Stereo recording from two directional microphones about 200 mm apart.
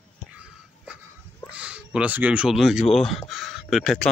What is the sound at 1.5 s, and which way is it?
Speech, 5° right (ahead or behind).